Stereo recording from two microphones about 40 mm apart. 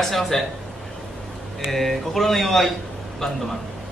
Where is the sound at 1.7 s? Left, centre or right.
Centre.